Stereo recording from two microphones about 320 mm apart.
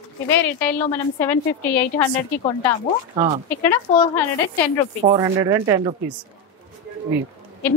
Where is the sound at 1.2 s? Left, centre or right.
Centre.